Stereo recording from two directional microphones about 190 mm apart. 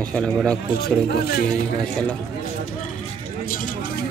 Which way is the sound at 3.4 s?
45° left (ahead or behind).